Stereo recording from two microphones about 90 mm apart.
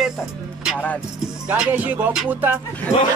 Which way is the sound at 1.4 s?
10° right (ahead or behind).